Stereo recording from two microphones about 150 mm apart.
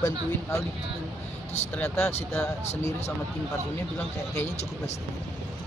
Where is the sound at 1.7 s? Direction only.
10° left (ahead or behind).